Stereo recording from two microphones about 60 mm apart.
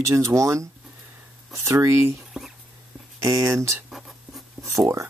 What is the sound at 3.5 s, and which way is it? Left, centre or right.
Speech, right.